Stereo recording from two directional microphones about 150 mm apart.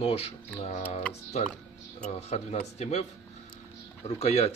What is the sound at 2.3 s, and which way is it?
Speech, 50° left (ahead or behind).